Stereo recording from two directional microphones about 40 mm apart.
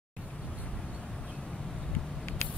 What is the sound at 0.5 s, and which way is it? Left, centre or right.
Vehicle, left.